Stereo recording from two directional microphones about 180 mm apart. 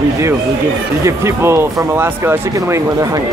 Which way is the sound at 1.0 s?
15° right (ahead or behind).